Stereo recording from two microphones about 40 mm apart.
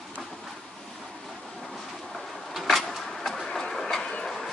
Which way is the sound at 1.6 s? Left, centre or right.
Centre.